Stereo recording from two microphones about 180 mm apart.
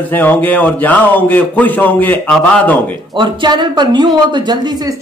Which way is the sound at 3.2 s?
25° right (ahead or behind).